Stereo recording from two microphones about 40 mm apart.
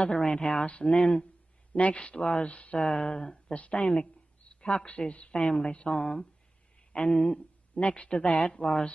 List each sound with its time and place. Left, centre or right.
0.0 s speech: left
1.7 s speech: left
2.1 s speech: left
2.4 s speech: left
2.8 s speech: centre
5.7 s speech: left
5.9 s speech: centre
8.5 s speech: centre